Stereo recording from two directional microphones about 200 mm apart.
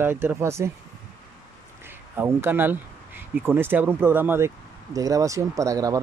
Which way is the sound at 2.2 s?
10° right (ahead or behind).